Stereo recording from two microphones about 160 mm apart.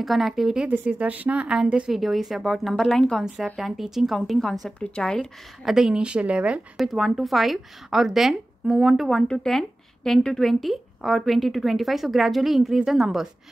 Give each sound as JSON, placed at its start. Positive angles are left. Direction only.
{"t": 0.0, "sound": "a woman's voice", "side_deg": 0}